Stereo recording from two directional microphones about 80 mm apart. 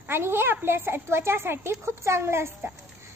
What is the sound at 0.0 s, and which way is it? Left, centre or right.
A child's voice, right.